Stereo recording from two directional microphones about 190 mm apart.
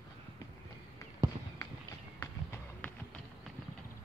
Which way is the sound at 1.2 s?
15° right (ahead or behind).